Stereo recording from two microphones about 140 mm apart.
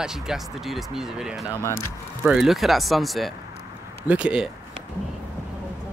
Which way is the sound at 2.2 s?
5° right (ahead or behind).